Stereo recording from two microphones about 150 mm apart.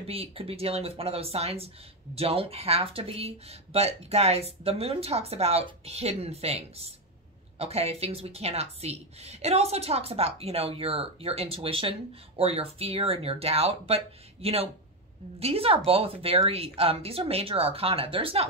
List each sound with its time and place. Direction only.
0.0 s speech: 40° right (ahead or behind)